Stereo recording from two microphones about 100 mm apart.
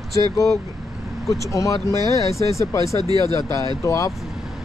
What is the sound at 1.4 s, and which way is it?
Speech, 35° left (ahead or behind).